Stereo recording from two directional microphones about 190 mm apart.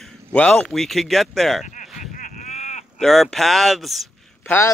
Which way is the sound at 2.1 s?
40° left (ahead or behind).